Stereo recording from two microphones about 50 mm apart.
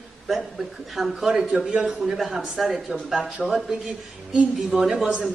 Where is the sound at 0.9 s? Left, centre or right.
Centre.